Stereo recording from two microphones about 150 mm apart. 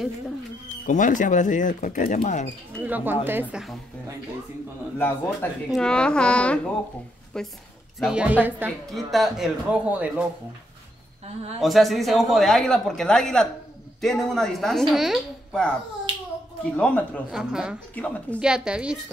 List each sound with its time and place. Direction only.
0.8 s speech: 60° left (ahead or behind)
2.8 s a man's voice: 10° right (ahead or behind)
4.9 s a woman's voice: 15° left (ahead or behind)
8.0 s a man's voice: 5° right (ahead or behind)
8.9 s a man's voice: centre (ahead or behind)
11.6 s speech: centre (ahead or behind)
16.7 s a woman's voice: 10° left (ahead or behind)
17.3 s speech: 5° right (ahead or behind)
17.9 s a woman's voice: 10° left (ahead or behind)
18.4 s speech: 5° right (ahead or behind)